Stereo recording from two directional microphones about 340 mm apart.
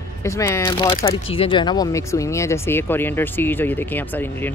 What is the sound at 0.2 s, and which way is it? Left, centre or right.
Speech, centre.